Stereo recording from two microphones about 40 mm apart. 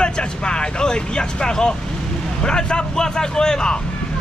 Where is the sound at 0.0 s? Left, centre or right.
Left.